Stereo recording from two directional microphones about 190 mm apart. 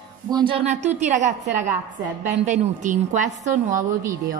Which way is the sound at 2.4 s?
40° right (ahead or behind).